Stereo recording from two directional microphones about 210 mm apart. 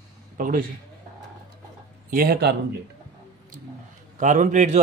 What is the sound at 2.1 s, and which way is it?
Speech, 45° right (ahead or behind).